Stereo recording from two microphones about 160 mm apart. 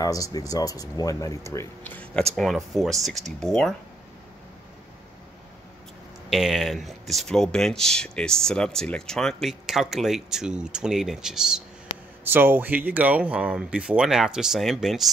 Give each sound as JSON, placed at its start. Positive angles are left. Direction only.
{"t": 0.0, "sound": "speech", "side_deg": 20}
{"t": 6.3, "sound": "speech", "side_deg": 0}